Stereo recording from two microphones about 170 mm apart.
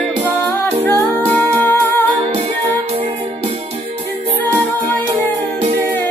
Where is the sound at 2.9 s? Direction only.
35° right (ahead or behind).